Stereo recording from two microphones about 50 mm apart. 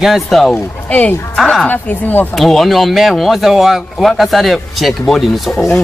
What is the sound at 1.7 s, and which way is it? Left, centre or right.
Speech, left.